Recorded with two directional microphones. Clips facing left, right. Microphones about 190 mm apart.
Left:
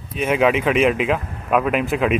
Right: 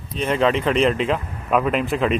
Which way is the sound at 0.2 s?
10° left (ahead or behind).